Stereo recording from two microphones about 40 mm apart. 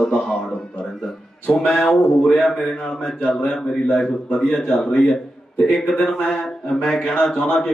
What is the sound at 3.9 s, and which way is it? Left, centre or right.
A man's voice, centre.